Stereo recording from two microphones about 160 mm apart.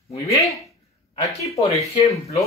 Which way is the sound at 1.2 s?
20° left (ahead or behind).